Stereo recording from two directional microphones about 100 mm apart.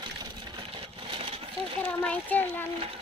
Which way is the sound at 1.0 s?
65° right (ahead or behind).